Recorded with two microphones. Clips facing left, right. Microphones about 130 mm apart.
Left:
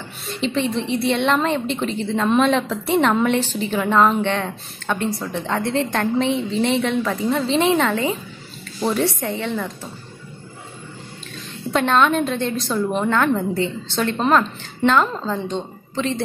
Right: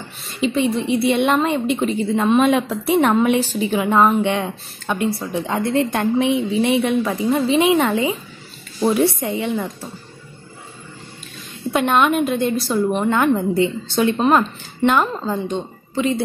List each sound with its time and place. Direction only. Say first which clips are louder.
0.3 s a woman's voice: right 3 dB; 5° right (ahead or behind)
11.7 s a woman's voice: right 1 dB; 10° right (ahead or behind)